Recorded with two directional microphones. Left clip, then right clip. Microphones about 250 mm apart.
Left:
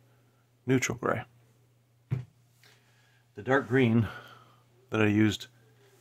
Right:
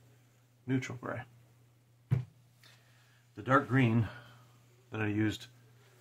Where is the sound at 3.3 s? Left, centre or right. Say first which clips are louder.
Left 2 dB; left.